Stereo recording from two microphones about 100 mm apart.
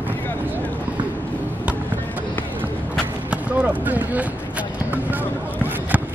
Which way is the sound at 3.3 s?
15° right (ahead or behind).